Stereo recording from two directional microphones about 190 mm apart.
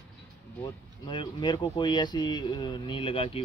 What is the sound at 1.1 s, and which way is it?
Speech, 25° left (ahead or behind).